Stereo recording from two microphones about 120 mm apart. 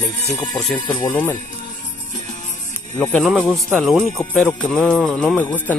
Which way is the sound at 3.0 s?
10° left (ahead or behind).